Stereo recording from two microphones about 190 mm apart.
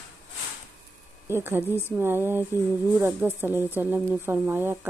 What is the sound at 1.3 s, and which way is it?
Speech, 10° right (ahead or behind).